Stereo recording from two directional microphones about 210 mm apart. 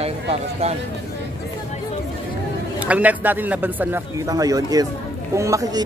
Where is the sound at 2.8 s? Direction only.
5° right (ahead or behind).